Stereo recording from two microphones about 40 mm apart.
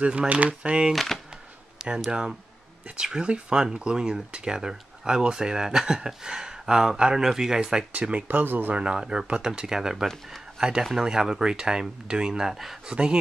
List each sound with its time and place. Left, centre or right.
0.3 s speech: right
0.7 s speech: right
0.9 s speech: centre
2.0 s speech: centre
8.3 s speech: right
8.7 s speech: right; by 12.7 s centre
12.8 s speech: right